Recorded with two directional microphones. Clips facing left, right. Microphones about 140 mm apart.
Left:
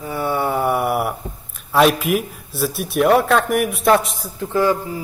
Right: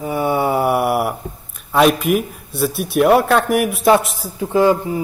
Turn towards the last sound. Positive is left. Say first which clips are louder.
# right 4 dB
turn(degrees=-20)  # may be behind; listen again after turning